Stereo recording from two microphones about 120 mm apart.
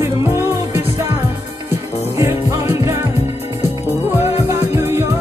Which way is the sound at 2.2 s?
20° right (ahead or behind).